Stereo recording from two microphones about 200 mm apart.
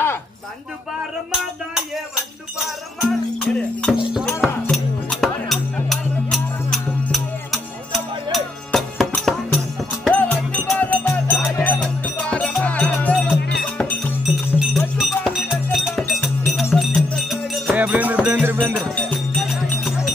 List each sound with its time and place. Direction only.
3.0 s music: 5° left (ahead or behind)
13.4 s music: 55° left (ahead or behind)
13.7 s music: 5° left (ahead or behind); by 18.9 s 10° right (ahead or behind)
18.9 s music: 5° left (ahead or behind)